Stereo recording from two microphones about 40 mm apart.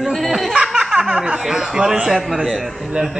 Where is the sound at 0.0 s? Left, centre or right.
Centre.